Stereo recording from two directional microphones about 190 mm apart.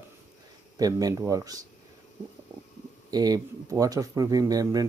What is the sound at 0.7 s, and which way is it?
Speech, 20° right (ahead or behind).